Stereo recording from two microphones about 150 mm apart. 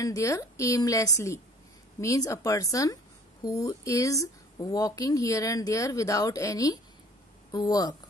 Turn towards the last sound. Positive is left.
turn(degrees=25)  # may be behind; listen again after turning